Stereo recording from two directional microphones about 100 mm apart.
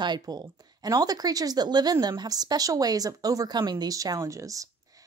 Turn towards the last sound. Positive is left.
turn(degrees=-35)  # may be behind; listen again after turning